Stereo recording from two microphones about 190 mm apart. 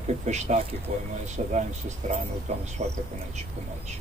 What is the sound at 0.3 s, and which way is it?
Speech, 35° right (ahead or behind).